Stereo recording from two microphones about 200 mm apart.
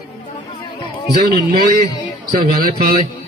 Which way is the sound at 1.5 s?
50° right (ahead or behind).